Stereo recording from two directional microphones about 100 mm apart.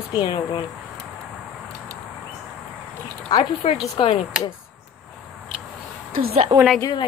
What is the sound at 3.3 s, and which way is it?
Speech, 50° left (ahead or behind).